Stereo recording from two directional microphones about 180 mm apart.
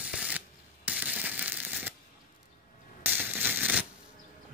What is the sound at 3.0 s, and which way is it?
Coin, 10° right (ahead or behind).